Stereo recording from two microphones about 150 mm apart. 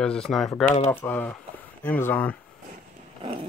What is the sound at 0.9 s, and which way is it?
Speech, 15° left (ahead or behind).